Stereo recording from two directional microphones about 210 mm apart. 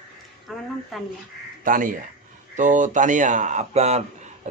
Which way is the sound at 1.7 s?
40° right (ahead or behind).